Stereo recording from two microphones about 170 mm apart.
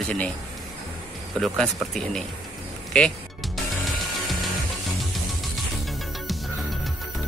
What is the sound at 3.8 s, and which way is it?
Music, centre (ahead or behind).